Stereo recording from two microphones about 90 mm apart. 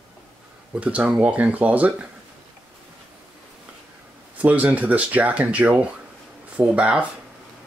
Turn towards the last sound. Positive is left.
turn(degrees=-10)  # may be behind; listen again after turning